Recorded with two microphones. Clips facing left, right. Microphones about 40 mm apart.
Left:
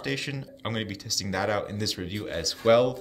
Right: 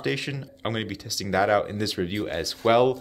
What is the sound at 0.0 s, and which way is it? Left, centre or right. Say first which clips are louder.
Speech: right 3 dB; centre.